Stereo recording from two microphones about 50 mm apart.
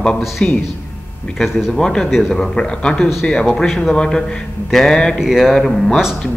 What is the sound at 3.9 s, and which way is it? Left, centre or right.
Speech, centre.